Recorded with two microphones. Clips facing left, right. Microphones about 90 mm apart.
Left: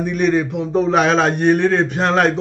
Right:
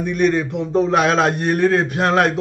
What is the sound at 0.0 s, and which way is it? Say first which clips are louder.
A man's voice: left 1 dB; 5° left (ahead or behind).